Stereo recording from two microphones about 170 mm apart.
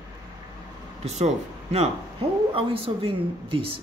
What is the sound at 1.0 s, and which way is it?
Speech, 40° right (ahead or behind).